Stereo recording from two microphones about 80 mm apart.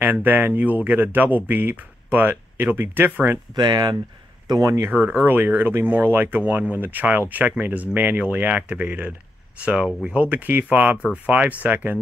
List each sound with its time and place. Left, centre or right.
0.0 s speech: right
3.5 s speech: right
4.5 s speech: right
4.8 s speech: right